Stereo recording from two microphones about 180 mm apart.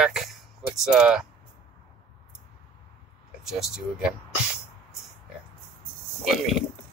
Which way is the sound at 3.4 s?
Centre (ahead or behind).